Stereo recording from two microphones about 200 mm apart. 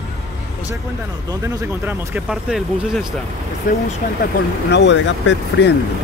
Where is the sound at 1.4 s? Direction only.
15° right (ahead or behind).